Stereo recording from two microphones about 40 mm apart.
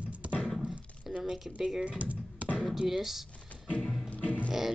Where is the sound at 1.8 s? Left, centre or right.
Right.